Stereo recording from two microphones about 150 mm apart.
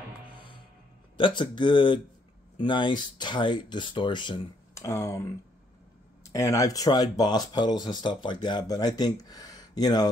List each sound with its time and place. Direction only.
1.1 s speech: 35° left (ahead or behind)
4.7 s speech: 20° left (ahead or behind)